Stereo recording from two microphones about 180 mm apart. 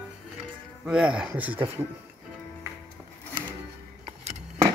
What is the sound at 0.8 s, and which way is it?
Speech, 5° right (ahead or behind).